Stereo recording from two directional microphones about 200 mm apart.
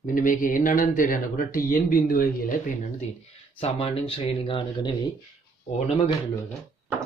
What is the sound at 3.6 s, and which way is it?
Speech, 25° left (ahead or behind).